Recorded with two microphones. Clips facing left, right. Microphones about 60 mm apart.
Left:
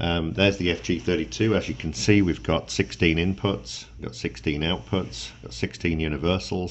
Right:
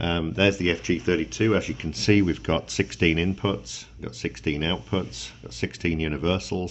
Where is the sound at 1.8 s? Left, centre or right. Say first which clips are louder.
Left 1 dB; centre.